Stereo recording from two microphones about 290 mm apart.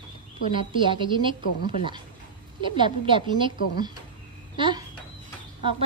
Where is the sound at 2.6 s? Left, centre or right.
Centre.